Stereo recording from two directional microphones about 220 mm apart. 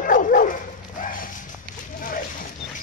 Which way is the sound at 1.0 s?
40° left (ahead or behind).